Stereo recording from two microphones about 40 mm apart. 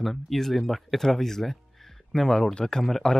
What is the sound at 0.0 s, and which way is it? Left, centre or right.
Speech, centre.